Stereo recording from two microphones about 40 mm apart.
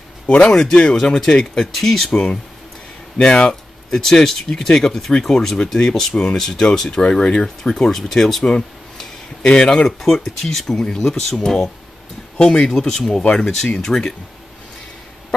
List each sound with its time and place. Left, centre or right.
0.3 s speech: left; by 2.0 s centre
2.0 s speech: left
3.9 s speech: centre
7.0 s speech: left; by 8.5 s centre
8.5 s a sound: left
10.0 s speech: centre